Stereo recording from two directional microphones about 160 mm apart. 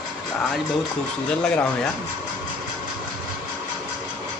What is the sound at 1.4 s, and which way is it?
Speech, 10° left (ahead or behind).